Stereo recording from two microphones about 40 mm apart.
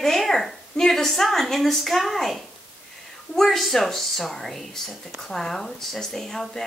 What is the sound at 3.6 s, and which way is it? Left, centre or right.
A woman's voice, centre.